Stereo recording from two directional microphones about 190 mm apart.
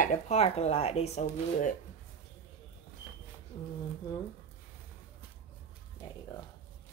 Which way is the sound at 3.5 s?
25° left (ahead or behind).